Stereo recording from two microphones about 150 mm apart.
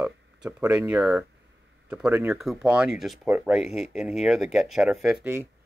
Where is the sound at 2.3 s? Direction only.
5° right (ahead or behind).